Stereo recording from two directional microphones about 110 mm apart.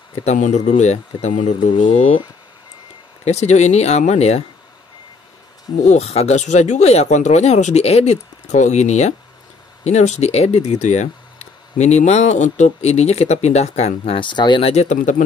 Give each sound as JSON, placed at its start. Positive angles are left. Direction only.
{"t": 0.2, "sound": "speech", "side_deg": 90}
{"t": 1.7, "sound": "speech", "side_deg": 50}
{"t": 3.3, "sound": "speech", "side_deg": 85}
{"t": 5.8, "sound": "speech", "side_deg": 80}
{"t": 14.1, "sound": "speech", "side_deg": 45}
{"t": 14.6, "sound": "speech", "side_deg": 80}